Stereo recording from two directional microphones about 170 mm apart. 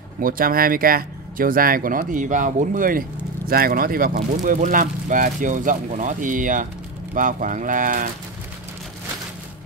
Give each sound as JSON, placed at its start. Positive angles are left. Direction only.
{"t": 0.2, "sound": "speech", "side_deg": -55}